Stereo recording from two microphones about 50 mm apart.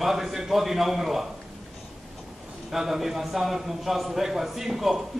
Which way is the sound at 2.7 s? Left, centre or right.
Centre.